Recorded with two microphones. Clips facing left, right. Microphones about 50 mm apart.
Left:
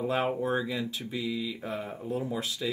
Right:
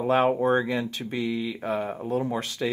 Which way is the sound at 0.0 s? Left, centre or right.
Right.